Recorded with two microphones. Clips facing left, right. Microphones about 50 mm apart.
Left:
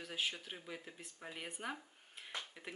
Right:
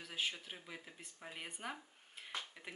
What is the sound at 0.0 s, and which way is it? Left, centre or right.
Speech, centre.